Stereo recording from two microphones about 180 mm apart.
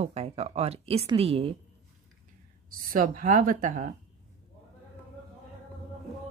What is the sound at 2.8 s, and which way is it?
Speech, 50° right (ahead or behind).